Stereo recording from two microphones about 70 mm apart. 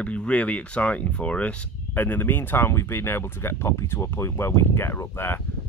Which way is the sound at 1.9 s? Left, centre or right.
Left.